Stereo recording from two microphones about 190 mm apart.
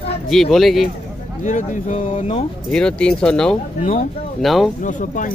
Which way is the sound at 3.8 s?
45° left (ahead or behind).